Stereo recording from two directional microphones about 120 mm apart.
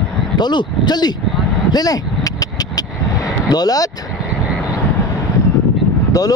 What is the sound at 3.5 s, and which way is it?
Speech, 30° left (ahead or behind).